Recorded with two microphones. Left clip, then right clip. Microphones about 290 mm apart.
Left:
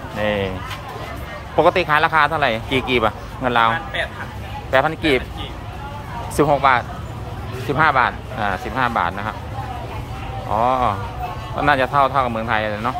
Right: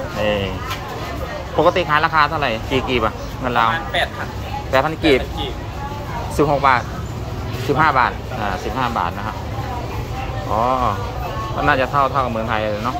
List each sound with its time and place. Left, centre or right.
0.2 s speech: centre
1.6 s speech: centre
4.7 s speech: centre
6.3 s speech: centre
10.5 s speech: centre